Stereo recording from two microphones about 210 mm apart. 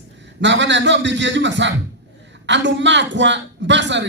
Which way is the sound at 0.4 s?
60° right (ahead or behind).